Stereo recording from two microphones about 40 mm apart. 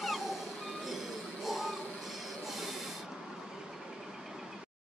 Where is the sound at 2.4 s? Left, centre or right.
Centre.